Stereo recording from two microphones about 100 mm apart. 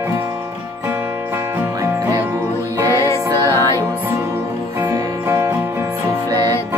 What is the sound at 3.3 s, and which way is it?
Music, 40° right (ahead or behind).